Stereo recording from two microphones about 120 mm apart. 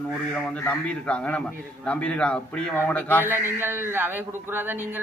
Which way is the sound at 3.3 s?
20° right (ahead or behind).